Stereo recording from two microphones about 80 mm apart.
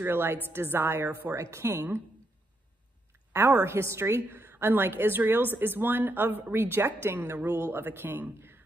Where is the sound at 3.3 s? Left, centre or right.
Right.